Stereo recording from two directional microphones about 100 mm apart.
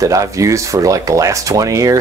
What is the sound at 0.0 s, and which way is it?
Speech, 35° right (ahead or behind).